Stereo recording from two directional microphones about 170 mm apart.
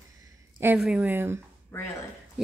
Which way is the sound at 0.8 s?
5° right (ahead or behind).